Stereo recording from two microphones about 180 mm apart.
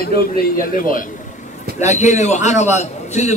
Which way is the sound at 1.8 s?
40° left (ahead or behind).